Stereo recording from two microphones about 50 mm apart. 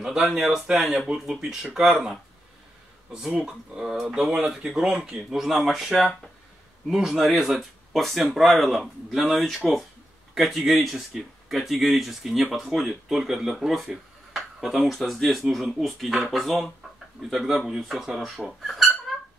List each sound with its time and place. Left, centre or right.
0.0 s speech: centre
3.1 s speech: centre
4.9 s speech: centre
18.7 s a sound: centre